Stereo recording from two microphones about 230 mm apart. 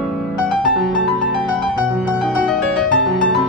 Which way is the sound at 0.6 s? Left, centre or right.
Centre.